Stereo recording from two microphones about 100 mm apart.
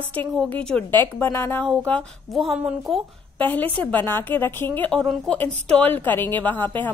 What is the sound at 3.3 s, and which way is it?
A woman's voice, 15° left (ahead or behind).